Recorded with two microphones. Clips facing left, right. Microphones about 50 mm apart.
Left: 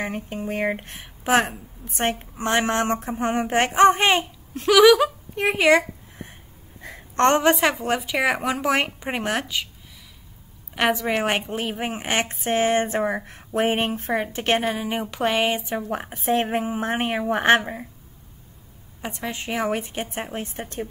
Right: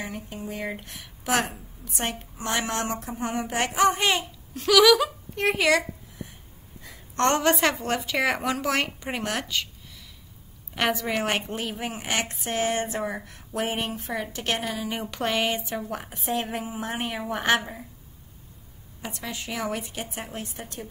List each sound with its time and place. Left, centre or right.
0.0 s a woman's voice: left; by 5.5 s centre
5.6 s a sound: left
7.2 s speech: left
7.5 s speech: centre
10.9 s a woman's voice: left
15.0 s speech: centre
15.9 s a woman's voice: left
18.9 s a woman's voice: left